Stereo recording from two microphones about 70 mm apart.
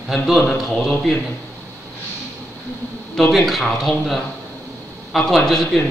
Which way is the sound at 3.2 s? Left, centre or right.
Centre.